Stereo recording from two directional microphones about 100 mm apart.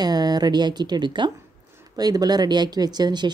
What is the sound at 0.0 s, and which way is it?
Speech, 40° right (ahead or behind).